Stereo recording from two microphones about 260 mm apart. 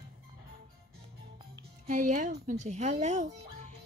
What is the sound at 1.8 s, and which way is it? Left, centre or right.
Speech, right.